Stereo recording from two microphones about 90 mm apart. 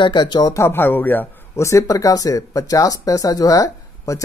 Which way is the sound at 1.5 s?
35° left (ahead or behind).